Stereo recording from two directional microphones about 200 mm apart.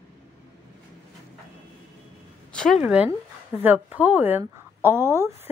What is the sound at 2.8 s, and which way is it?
Speech, 5° right (ahead or behind).